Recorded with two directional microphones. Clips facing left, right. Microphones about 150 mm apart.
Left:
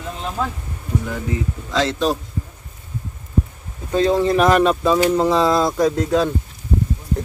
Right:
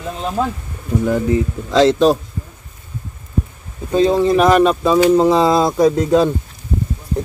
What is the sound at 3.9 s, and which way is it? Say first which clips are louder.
Speech: right 3 dB; 15° right (ahead or behind).